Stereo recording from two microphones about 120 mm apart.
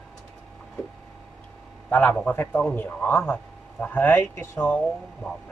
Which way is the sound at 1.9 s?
15° left (ahead or behind).